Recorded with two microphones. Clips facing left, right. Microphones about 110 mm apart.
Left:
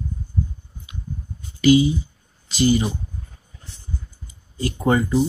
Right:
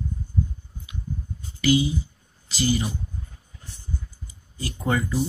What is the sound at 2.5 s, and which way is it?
Speech, 20° left (ahead or behind).